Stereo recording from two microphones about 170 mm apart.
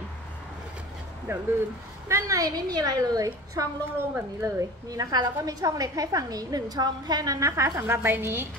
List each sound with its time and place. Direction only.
1.3 s a woman's voice: 15° right (ahead or behind)